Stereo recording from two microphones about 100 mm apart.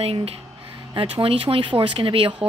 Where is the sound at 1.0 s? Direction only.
60° right (ahead or behind).